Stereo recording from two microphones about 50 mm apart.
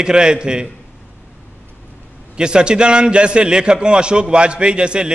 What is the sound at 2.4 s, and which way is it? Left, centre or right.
A man's voice, centre.